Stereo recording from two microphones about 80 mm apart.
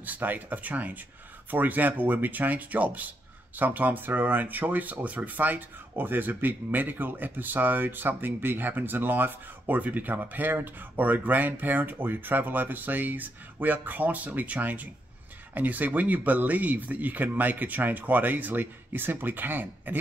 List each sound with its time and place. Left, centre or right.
0.0 s speech: right